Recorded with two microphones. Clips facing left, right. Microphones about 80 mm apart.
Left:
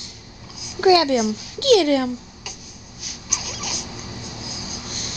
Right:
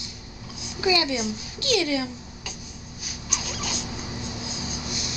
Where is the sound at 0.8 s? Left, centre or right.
Left.